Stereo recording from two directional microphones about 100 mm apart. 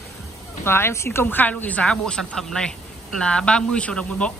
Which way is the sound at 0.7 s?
25° left (ahead or behind).